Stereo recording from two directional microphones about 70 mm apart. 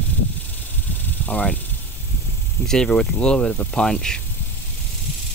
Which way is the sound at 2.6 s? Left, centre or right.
Centre.